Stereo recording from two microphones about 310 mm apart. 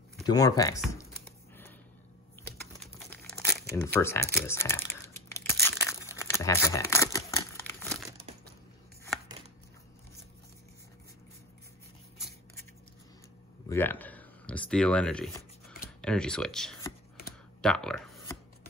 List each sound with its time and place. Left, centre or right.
0.3 s speech: centre
2.8 s crumpling: centre
8.3 s crushing: right
13.7 s speech: centre